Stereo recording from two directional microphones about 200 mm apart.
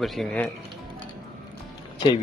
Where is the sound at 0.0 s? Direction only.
Centre (ahead or behind).